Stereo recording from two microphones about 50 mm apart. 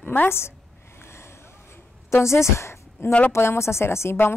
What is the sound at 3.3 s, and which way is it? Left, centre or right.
Speech, left.